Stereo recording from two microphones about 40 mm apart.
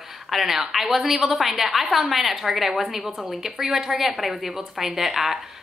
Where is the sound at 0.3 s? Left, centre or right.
Centre.